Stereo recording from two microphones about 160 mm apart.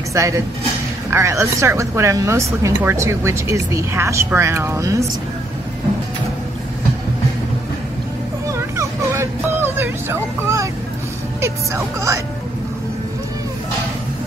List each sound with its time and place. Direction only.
0.1 s speech: 20° right (ahead or behind)
8.5 s vehicle: 20° right (ahead or behind)
11.4 s speech: 15° right (ahead or behind)